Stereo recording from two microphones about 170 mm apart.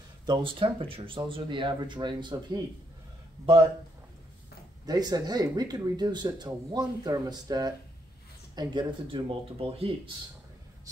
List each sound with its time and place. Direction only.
0.3 s speech: 30° right (ahead or behind)
4.8 s speech: 25° right (ahead or behind)